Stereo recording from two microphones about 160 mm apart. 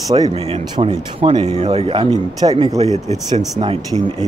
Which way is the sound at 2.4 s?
20° right (ahead or behind).